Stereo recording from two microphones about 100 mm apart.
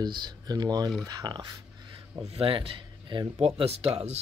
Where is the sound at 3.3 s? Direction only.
85° right.